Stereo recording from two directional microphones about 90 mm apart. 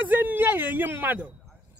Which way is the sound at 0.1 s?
20° right (ahead or behind).